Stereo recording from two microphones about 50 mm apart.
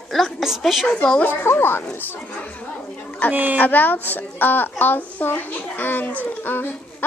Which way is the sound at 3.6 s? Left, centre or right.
Left.